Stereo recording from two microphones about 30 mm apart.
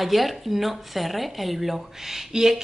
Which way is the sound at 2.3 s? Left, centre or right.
Centre.